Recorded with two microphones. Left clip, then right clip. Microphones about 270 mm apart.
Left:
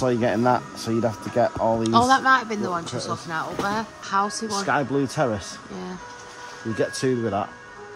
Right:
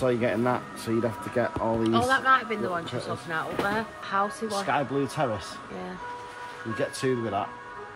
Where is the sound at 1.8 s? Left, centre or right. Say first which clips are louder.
Left 5 dB; centre.